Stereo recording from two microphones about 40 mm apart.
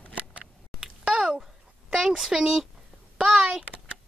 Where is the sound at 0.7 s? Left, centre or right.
Right.